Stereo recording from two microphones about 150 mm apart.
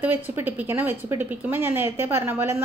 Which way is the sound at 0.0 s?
15° right (ahead or behind).